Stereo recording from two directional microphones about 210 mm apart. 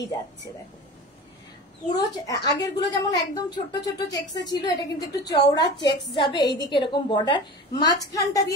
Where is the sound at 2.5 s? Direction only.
20° left (ahead or behind).